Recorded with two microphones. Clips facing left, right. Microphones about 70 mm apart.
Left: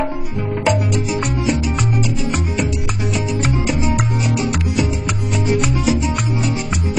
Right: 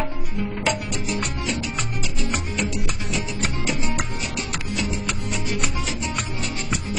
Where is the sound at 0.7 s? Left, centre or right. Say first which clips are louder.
Left 8 dB; centre.